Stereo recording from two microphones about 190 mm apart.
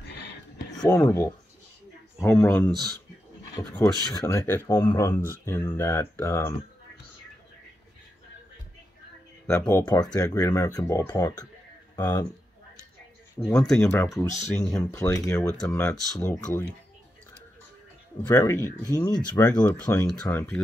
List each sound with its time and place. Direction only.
0.1 s whispering: 60° left (ahead or behind)
0.7 s speech: 20° left (ahead or behind)
9.5 s speech: 15° left (ahead or behind)
13.7 s speech: 5° left (ahead or behind)
18.2 s speech: 20° left (ahead or behind)